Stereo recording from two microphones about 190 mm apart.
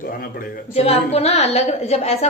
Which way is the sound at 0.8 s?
35° left (ahead or behind).